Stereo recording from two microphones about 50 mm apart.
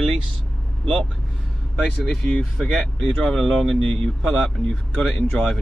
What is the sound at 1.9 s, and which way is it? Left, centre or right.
Speech, centre.